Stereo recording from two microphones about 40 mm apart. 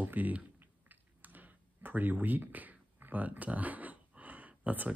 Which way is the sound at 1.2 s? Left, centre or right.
Right.